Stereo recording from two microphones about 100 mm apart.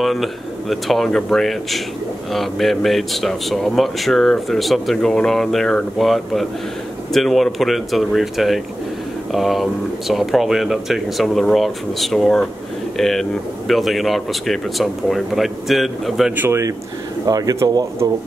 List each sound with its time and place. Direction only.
0.0 s speech: centre (ahead or behind)
16.3 s speech: 25° right (ahead or behind)